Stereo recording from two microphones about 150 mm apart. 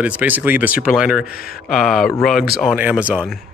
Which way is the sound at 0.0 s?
10° right (ahead or behind).